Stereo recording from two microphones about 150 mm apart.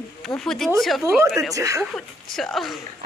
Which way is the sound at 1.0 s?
20° right (ahead or behind).